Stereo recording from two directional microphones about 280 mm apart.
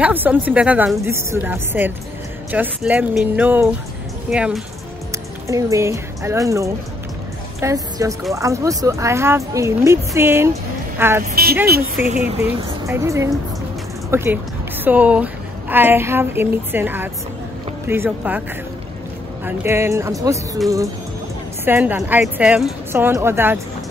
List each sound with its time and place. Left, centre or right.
0.0 s a woman's voice: centre
19.4 s a woman's voice: centre
21.6 s a woman's voice: centre